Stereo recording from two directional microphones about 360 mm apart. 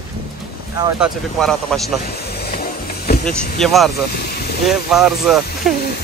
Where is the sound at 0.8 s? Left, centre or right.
Centre.